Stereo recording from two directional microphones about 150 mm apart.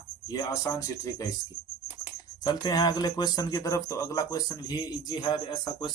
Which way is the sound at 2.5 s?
25° left (ahead or behind).